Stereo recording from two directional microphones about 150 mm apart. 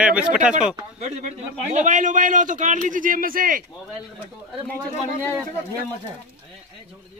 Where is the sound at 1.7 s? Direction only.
60° right (ahead or behind).